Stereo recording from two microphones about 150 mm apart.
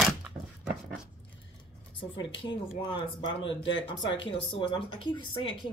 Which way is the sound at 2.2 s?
35° left (ahead or behind).